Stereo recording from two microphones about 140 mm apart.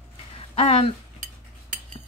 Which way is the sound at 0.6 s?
45° left (ahead or behind).